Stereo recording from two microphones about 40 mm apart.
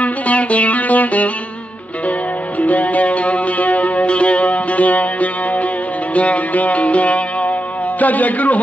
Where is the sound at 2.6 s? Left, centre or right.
Left.